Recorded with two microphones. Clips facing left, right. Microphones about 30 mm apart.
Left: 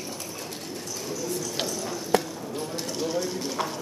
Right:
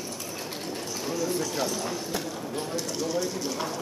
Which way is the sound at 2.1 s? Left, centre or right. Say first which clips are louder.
Left 13 dB; left.